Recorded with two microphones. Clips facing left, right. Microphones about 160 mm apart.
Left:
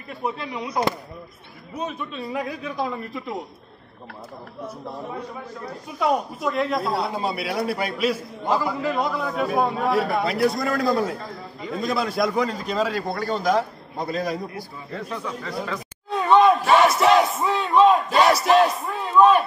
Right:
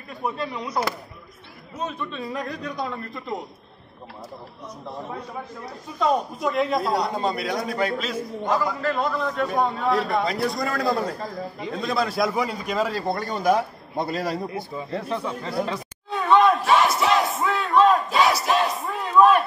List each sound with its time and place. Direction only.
0.2 s speech: 10° left (ahead or behind)
1.9 s a man's voice: 5° left (ahead or behind)
5.9 s a man's voice: 10° left (ahead or behind); by 13.7 s 10° right (ahead or behind)
14.0 s a man's voice: 25° right (ahead or behind)
16.1 s battle cry: centre (ahead or behind)